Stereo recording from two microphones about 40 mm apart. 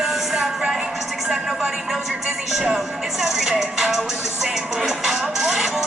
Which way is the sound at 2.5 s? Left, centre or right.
Centre.